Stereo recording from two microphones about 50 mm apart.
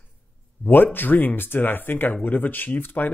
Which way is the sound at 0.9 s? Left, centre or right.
Left.